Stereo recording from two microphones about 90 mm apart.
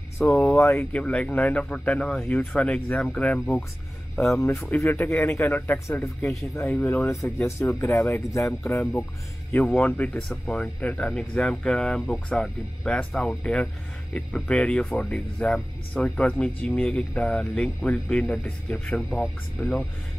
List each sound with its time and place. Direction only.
0.4 s speech: 25° left (ahead or behind)
0.9 s speech: 15° left (ahead or behind)
4.4 s speech: 30° left (ahead or behind); by 19.9 s 10° left (ahead or behind)